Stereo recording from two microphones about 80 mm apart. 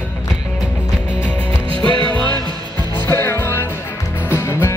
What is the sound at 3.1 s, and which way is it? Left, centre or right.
Music, left.